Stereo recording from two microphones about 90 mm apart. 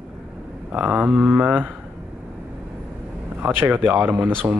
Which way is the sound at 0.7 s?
15° right (ahead or behind).